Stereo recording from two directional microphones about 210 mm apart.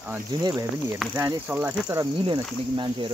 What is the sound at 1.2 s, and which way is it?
Speech, 10° right (ahead or behind).